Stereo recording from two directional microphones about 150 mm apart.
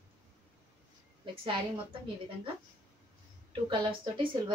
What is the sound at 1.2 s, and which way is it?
Speech, 40° right (ahead or behind).